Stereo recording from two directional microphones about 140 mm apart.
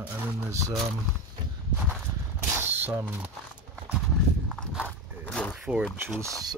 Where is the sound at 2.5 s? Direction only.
15° right (ahead or behind).